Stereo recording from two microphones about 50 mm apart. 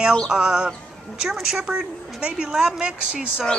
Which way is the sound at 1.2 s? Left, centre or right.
Centre.